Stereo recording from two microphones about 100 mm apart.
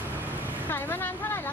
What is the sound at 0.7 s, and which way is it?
Vehicle, 20° left (ahead or behind).